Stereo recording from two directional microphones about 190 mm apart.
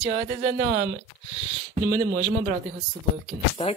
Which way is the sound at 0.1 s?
45° right (ahead or behind).